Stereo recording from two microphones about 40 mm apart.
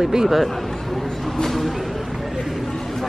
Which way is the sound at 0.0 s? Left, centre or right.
Centre.